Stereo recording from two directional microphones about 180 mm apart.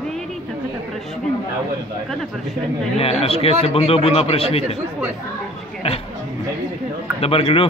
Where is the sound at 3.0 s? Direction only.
35° left (ahead or behind).